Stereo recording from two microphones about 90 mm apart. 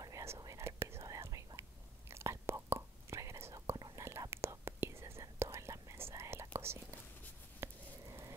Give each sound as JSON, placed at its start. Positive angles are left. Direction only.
{"t": 0.0, "sound": "whispering", "side_deg": -35}
{"t": 3.7, "sound": "whispering", "side_deg": -50}
{"t": 4.0, "sound": "whispering", "side_deg": -30}
{"t": 7.6, "sound": "a sound", "side_deg": -30}